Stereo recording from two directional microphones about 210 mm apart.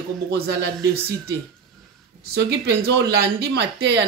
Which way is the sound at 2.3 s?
50° right (ahead or behind).